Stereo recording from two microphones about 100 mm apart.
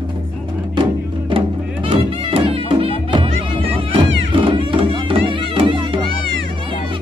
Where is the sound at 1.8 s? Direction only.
65° right (ahead or behind).